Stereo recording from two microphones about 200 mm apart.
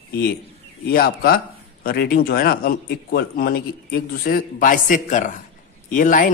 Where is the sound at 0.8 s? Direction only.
50° left (ahead or behind).